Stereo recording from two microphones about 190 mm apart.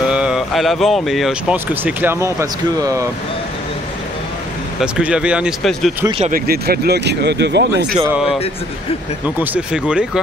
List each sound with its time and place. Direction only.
0.1 s speech: 5° right (ahead or behind)
4.7 s speech: 5° right (ahead or behind)
6.3 s speech: 55° right (ahead or behind)
9.4 s speech: 10° right (ahead or behind)